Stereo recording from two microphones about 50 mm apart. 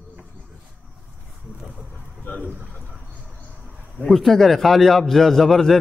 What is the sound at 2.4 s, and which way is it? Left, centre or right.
Speech, right.